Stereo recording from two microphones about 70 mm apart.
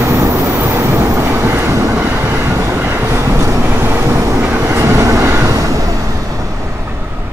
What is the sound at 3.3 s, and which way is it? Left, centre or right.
Vehicle, right.